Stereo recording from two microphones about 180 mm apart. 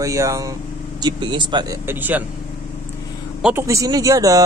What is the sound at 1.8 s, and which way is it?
Speech, 10° right (ahead or behind).